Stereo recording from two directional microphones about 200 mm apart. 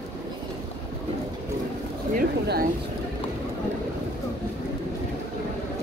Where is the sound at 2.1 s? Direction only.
50° right (ahead or behind).